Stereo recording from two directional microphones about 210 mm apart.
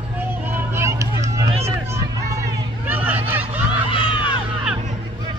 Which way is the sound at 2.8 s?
10° right (ahead or behind).